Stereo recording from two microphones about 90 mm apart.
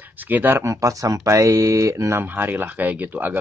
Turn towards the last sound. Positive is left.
turn(degrees=-20)  # may be behind; listen again after turning